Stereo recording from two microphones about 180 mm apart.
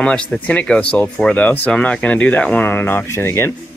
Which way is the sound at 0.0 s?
5° left (ahead or behind).